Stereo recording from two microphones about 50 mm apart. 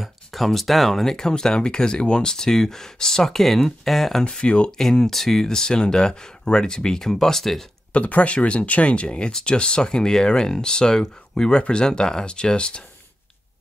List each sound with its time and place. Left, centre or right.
0.0 s speech: centre
4.2 s speech: centre
7.9 s speech: left